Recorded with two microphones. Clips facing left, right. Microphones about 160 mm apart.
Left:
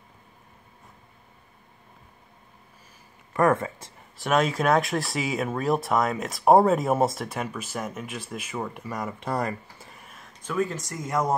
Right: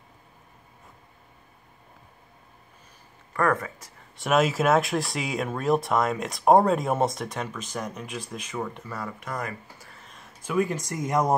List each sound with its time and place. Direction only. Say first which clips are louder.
3.3 s speech: left 3 dB; 25° left (ahead or behind)
4.2 s speech: right 1 dB; centre (ahead or behind); by 9.1 s 15° left (ahead or behind)
9.2 s speech: left 5 dB; 35° left (ahead or behind)
9.8 s a sound: left 1 dB; 15° left (ahead or behind)
10.4 s speech: right 2 dB; 10° right (ahead or behind)